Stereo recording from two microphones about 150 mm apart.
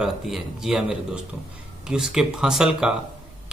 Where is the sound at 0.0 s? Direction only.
5° right (ahead or behind).